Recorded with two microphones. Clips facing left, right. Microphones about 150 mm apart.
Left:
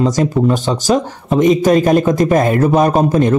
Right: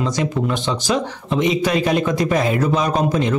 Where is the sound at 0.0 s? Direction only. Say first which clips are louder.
Left 7 dB; 40° left (ahead or behind).